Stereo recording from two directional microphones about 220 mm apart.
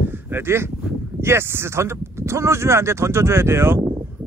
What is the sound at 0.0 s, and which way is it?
Speech, 10° right (ahead or behind).